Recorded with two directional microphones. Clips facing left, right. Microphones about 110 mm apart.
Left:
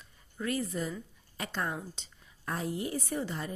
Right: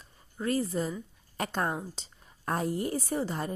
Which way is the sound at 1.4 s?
45° right (ahead or behind).